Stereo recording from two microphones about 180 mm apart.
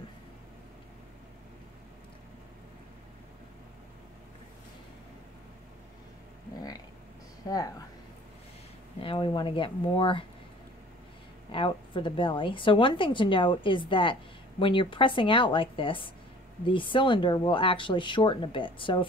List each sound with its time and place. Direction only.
7.4 s a woman's voice: 20° left (ahead or behind)
9.0 s a woman's voice: 30° left (ahead or behind)
11.5 s a woman's voice: 30° left (ahead or behind)